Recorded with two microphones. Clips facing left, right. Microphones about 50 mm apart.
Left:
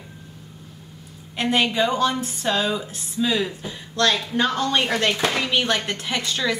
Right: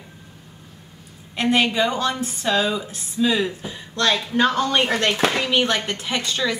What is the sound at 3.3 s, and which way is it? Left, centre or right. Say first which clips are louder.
A woman's voice: right 2 dB; centre.